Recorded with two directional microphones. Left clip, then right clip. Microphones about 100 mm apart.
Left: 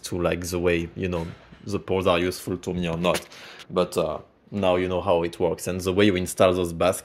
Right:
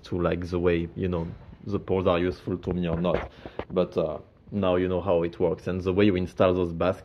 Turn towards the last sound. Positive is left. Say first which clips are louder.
# left 3 dB
turn(degrees=30)  # may be behind; listen again after turning